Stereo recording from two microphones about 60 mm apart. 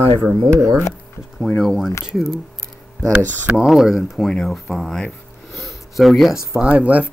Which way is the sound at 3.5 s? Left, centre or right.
Centre.